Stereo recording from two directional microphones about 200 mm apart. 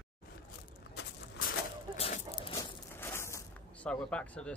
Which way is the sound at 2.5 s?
10° left (ahead or behind).